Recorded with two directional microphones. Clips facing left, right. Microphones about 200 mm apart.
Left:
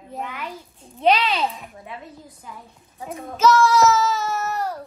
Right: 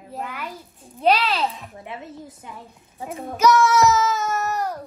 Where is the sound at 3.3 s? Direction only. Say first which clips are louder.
Even; 15° right (ahead or behind).